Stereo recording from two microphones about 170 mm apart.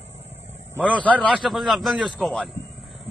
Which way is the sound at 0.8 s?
5° left (ahead or behind).